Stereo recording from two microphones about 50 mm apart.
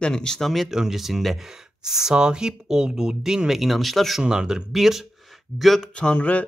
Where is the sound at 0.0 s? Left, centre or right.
Centre.